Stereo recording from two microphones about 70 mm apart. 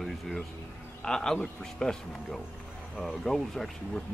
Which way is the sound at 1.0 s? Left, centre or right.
Centre.